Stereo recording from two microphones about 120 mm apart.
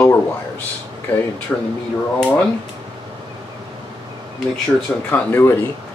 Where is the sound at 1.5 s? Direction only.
10° left (ahead or behind).